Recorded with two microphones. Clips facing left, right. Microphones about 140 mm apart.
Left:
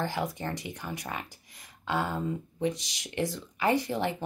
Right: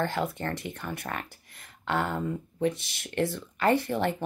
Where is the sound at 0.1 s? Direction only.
15° left (ahead or behind).